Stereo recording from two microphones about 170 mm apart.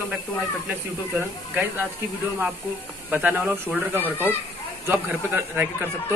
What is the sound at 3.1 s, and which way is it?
Speech, 10° right (ahead or behind).